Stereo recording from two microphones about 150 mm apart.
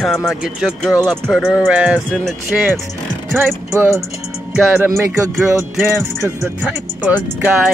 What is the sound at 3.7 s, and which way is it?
Speech, 20° right (ahead or behind).